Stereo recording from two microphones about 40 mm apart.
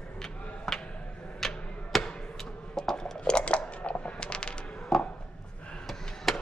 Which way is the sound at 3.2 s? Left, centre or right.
Left.